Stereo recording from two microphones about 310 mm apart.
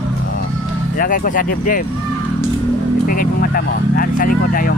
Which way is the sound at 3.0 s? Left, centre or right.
Left.